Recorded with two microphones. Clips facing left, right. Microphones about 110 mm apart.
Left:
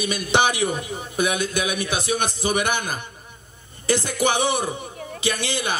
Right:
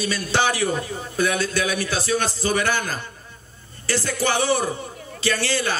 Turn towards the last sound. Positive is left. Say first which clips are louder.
# right 2 dB
turn(degrees=20)  # may be behind; listen again after turning